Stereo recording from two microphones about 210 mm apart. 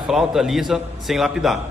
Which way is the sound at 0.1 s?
Centre (ahead or behind).